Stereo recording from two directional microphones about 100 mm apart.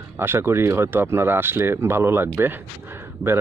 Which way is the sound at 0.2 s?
25° right (ahead or behind).